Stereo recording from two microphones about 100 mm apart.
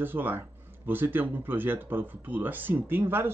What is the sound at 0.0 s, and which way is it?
Speech, 20° right (ahead or behind).